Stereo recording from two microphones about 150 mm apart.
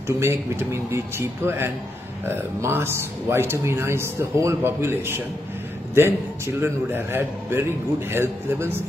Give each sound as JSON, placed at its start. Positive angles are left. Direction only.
{"t": 0.2, "sound": "speech", "side_deg": -15}